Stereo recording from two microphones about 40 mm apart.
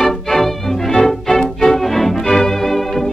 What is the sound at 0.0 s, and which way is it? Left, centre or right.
Music, centre.